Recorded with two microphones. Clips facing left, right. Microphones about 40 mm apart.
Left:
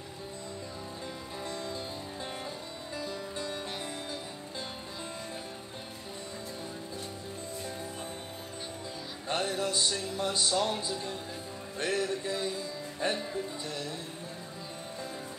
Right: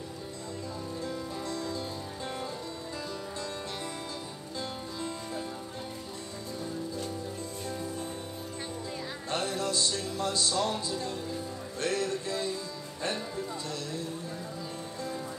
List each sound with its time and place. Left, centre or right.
1.4 s music: left
9.3 s speech: centre
11.8 s music: left